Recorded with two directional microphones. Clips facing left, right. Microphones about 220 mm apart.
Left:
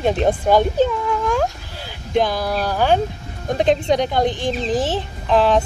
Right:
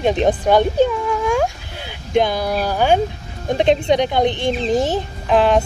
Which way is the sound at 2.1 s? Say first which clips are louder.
Right 2 dB; centre (ahead or behind).